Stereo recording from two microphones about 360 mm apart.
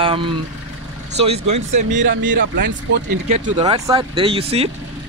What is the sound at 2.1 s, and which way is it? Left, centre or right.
Speech, right.